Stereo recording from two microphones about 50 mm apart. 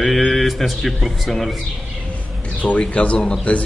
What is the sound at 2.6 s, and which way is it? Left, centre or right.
Speech, left.